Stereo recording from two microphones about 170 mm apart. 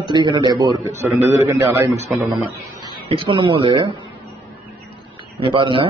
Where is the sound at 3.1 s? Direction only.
30° right (ahead or behind).